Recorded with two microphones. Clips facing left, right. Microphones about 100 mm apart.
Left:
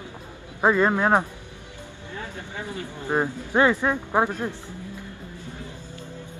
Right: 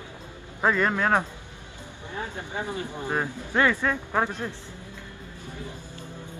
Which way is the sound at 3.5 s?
20° left (ahead or behind).